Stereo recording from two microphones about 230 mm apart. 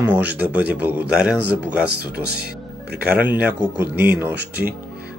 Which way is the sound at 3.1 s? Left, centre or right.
Centre.